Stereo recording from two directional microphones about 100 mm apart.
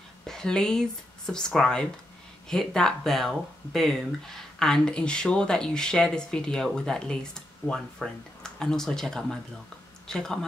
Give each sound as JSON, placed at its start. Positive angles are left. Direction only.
{"t": 0.3, "sound": "speech", "side_deg": 5}
{"t": 7.6, "sound": "speech", "side_deg": 25}
{"t": 8.0, "sound": "speech", "side_deg": 5}